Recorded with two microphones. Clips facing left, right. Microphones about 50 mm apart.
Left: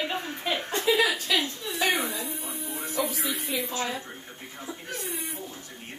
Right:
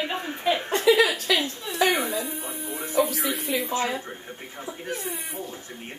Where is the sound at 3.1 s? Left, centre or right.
Right.